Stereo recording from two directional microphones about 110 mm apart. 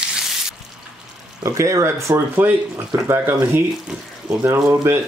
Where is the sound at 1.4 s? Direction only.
30° right (ahead or behind).